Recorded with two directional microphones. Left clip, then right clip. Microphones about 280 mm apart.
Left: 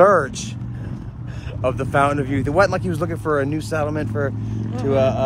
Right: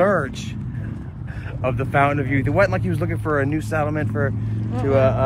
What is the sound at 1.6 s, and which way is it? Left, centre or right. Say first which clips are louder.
Speech: left 1 dB; centre.